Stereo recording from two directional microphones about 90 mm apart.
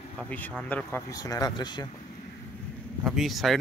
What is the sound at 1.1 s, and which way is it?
Speech, 40° left (ahead or behind).